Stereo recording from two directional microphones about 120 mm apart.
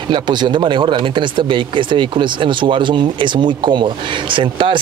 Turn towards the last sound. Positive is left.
turn(degrees=-45)  # may be behind; listen again after turning